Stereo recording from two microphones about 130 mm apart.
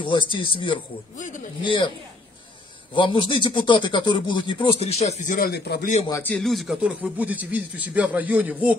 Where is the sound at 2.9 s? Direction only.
40° left (ahead or behind); by 6.0 s 80° left.